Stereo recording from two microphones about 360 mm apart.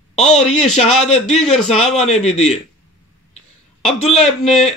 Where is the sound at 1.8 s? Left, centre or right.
Centre.